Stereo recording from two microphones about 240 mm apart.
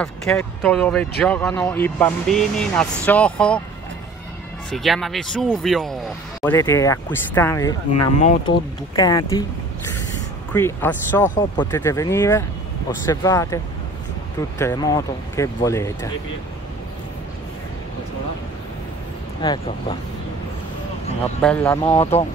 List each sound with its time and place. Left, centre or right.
0.0 s speech: centre
4.6 s speech: centre
6.4 s speech: centre
8.1 s speech: left
8.9 s speech: centre
10.5 s speech: centre
14.6 s speech: centre
19.4 s speech: centre
21.4 s speech: centre
21.8 s speech: left